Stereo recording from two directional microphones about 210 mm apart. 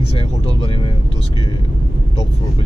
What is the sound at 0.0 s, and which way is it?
Vehicle, 25° left (ahead or behind).